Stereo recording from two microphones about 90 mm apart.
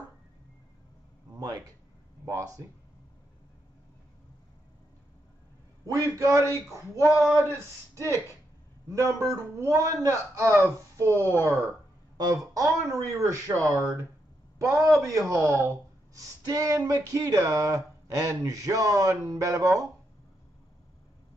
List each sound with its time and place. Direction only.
1.4 s speech: 45° right (ahead or behind)
2.2 s speech: 35° right (ahead or behind)
5.9 s speech: 35° right (ahead or behind)
8.9 s speech: 35° right (ahead or behind)
12.5 s speech: 40° right (ahead or behind)